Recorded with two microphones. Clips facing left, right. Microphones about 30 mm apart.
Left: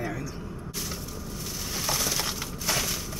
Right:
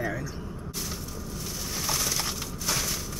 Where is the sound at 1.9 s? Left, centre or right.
Centre.